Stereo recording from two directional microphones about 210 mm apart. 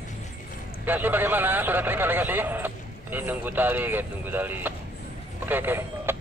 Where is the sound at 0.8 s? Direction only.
10° right (ahead or behind).